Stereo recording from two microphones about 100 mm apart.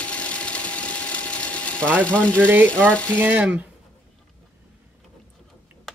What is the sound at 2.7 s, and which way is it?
Speech, 10° left (ahead or behind).